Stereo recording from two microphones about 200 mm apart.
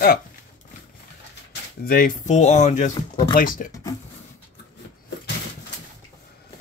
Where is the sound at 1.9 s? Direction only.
45° left (ahead or behind).